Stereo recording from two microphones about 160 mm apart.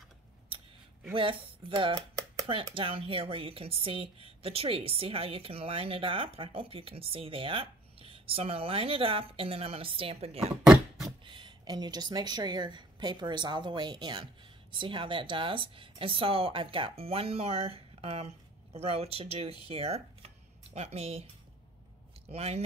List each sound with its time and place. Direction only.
1.1 s speech: 35° right (ahead or behind)
2.0 s a sound: 20° right (ahead or behind)
2.7 s speech: 35° right (ahead or behind)
22.3 s speech: 40° right (ahead or behind)